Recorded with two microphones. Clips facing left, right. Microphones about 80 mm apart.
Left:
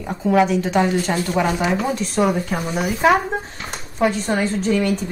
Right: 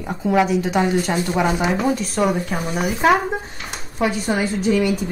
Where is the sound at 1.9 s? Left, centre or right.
Centre.